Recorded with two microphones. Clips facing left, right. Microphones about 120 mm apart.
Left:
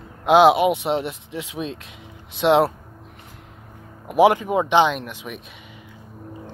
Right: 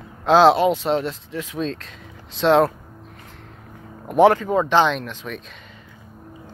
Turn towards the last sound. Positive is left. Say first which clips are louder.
# right 2 dB
turn(degrees=15)  # may be behind; listen again after turning